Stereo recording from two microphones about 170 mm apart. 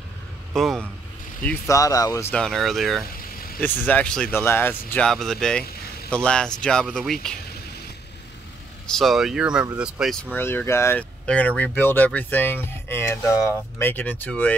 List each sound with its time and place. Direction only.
0.6 s speech: centre (ahead or behind)
1.8 s speech: 20° left (ahead or behind)
2.3 s speech: 5° left (ahead or behind)
3.2 s vehicle: 60° left (ahead or behind)
3.6 s speech: 10° left (ahead or behind)
8.8 s speech: centre (ahead or behind)
10.3 s speech: 15° left (ahead or behind)